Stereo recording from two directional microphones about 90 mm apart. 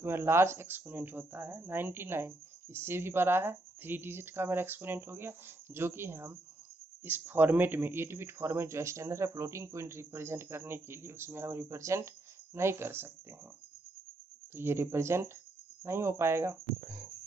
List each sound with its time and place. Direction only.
0.0 s speech: 25° right (ahead or behind)
14.5 s speech: 25° right (ahead or behind)